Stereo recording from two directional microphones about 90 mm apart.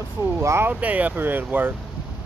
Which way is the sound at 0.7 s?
15° right (ahead or behind).